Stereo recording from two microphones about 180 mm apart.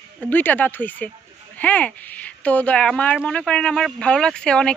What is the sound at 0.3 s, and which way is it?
Speech, 10° left (ahead or behind).